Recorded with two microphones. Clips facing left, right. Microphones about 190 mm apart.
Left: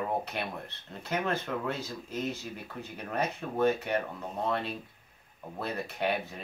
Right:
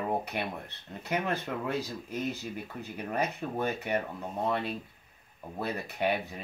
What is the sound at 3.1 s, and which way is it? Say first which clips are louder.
Speech: even; 10° right (ahead or behind).